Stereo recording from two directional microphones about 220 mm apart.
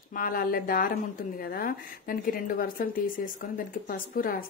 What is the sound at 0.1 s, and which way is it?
Speech, 40° left (ahead or behind).